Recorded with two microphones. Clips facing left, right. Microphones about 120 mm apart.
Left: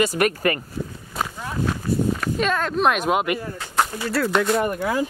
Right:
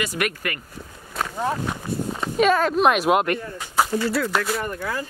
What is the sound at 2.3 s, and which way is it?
Speech, 5° right (ahead or behind).